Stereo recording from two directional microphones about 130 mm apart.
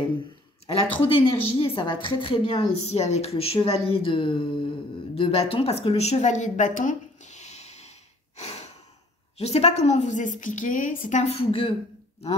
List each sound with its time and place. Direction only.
0.7 s speech: 45° left (ahead or behind)
2.9 s speech: 55° left (ahead or behind)
8.4 s breathing: 55° left (ahead or behind)
9.4 s a woman's voice: 55° left (ahead or behind)